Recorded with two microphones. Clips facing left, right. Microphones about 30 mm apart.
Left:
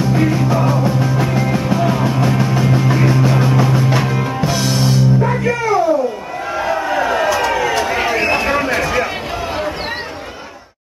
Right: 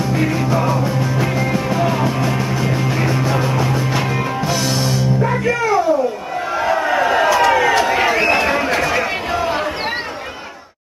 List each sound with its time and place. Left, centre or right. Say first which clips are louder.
0.1 s music: left 1 dB; centre
6.5 s crowd: right 1 dB; centre
8.9 s a sound: even; centre